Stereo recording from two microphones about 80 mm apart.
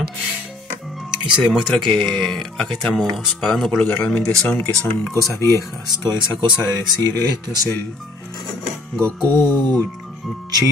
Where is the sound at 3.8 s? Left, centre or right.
Centre.